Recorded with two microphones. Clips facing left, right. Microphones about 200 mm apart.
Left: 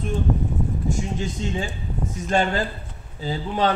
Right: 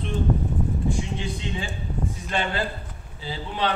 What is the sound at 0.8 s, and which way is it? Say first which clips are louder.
A man's voice: left 2 dB; 45° left (ahead or behind).